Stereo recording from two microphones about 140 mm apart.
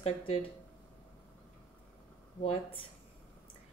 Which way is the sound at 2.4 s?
40° left (ahead or behind).